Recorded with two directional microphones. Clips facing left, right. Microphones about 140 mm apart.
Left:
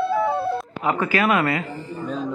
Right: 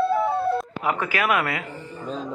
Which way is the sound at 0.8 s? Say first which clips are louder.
Left 3 dB; 5° right (ahead or behind).